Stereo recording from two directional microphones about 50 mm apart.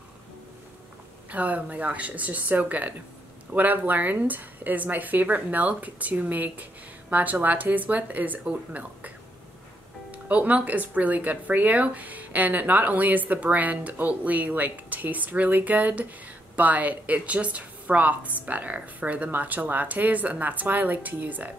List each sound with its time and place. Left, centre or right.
1.3 s speech: right
10.1 s speech: right